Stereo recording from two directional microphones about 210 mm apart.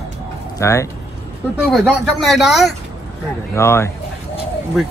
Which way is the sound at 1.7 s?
Centre (ahead or behind).